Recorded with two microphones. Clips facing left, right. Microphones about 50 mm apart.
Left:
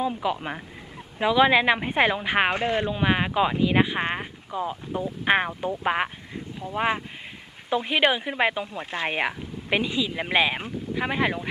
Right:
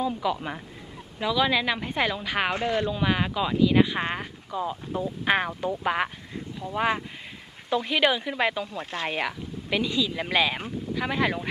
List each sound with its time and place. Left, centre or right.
0.0 s a woman's voice: left